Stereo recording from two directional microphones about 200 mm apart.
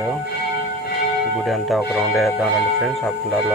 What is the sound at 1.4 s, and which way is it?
Speech, centre (ahead or behind).